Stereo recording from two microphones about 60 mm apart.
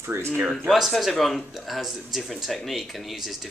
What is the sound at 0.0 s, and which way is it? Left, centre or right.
Speech, right.